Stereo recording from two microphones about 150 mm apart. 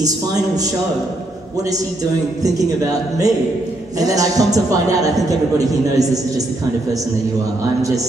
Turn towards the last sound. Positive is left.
turn(degrees=-25)  # may be behind; listen again after turning